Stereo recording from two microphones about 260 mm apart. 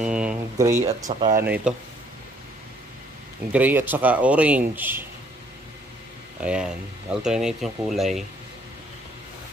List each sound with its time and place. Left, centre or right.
0.0 s speech: centre
0.7 s speech: right
1.4 s speech: centre
3.5 s speech: centre
6.4 s speech: centre